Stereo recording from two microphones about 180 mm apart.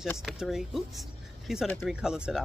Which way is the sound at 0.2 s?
Centre (ahead or behind).